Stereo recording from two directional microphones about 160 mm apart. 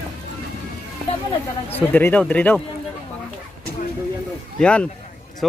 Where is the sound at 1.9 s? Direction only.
10° left (ahead or behind).